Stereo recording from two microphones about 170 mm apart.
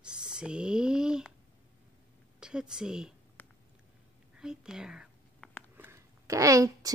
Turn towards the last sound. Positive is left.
turn(degrees=-20)  # may be behind; listen again after turning